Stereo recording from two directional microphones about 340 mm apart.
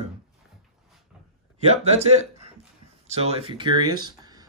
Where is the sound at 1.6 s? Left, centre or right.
Centre.